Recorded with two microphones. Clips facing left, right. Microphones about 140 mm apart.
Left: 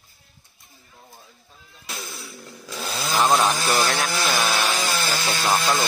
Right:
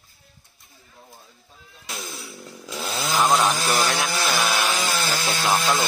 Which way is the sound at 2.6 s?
20° right (ahead or behind).